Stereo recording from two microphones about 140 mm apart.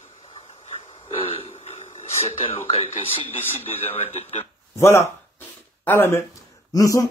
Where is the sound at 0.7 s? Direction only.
45° left (ahead or behind).